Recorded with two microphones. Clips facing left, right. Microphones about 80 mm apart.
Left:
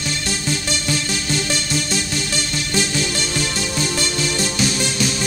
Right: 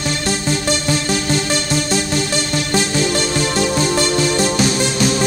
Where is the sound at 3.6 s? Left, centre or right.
Right.